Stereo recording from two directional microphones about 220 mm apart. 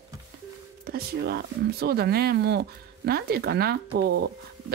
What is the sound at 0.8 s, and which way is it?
Speech, 45° right (ahead or behind).